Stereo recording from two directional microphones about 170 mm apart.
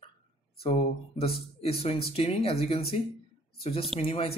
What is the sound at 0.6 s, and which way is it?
Speech, 35° left (ahead or behind).